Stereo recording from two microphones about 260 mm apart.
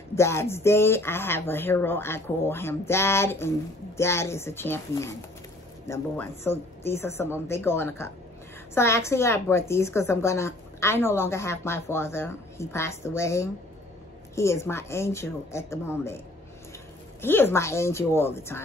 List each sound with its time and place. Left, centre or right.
0.1 s speech: centre
17.2 s speech: centre